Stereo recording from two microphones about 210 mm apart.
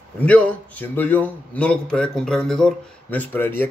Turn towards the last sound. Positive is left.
turn(degrees=10)  # may be behind; listen again after turning